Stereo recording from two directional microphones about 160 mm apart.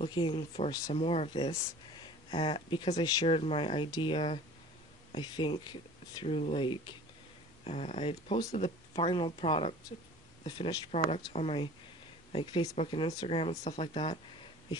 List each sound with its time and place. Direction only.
0.0 s speech: 30° left (ahead or behind)